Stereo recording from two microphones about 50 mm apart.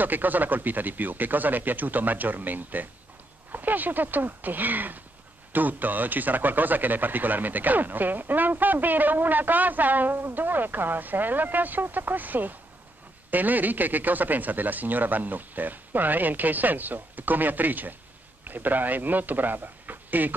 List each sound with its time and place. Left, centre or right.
0.0 s speech: right